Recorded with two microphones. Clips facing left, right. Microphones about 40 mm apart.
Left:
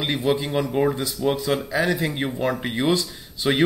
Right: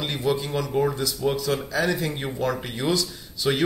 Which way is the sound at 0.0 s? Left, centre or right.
Left.